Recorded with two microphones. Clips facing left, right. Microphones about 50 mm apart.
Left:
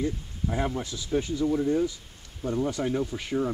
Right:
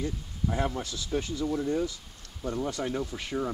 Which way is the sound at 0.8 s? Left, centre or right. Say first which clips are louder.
Even; centre.